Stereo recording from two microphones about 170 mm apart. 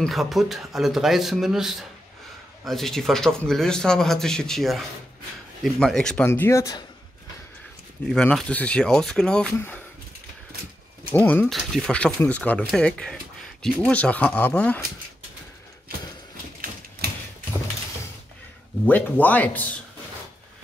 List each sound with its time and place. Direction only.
0.0 s a man's voice: centre (ahead or behind)
6.2 s speech: 15° left (ahead or behind)
8.1 s a man's voice: centre (ahead or behind)
11.1 s speech: 10° left (ahead or behind)
18.9 s speech: 10° left (ahead or behind)